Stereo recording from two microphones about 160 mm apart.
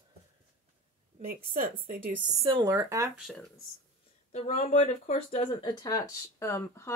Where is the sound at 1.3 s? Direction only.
65° right (ahead or behind).